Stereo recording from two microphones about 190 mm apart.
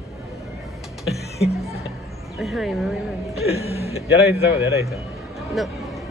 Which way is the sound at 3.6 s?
30° left (ahead or behind).